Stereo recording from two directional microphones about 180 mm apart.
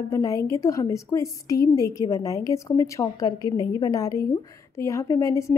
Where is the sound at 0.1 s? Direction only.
15° left (ahead or behind).